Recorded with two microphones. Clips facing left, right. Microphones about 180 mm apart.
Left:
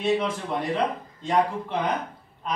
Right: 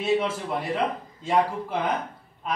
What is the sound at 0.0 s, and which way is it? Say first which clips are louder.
A man's voice: even; 5° right (ahead or behind).